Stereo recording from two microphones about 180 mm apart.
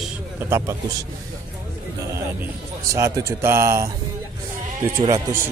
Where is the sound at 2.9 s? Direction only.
15° right (ahead or behind).